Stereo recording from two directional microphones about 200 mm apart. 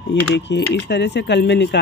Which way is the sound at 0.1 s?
60° left (ahead or behind).